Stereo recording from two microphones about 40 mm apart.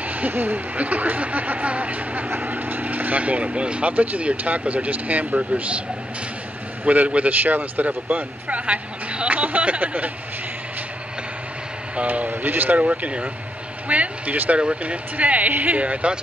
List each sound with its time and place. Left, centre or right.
0.0 s a sound: right
0.3 s speech: right
0.7 s speech: right
2.2 s speech: right
3.9 s speech: right
6.8 s speech: right
7.2 s speech: right
7.8 s speech: right
12.1 s speech: right
12.8 s speech: right